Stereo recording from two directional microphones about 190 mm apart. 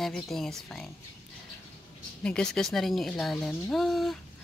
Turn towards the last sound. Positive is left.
turn(degrees=0)  # may be behind; listen again after turning